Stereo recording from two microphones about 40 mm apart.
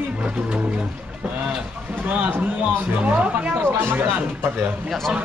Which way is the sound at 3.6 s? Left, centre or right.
Right.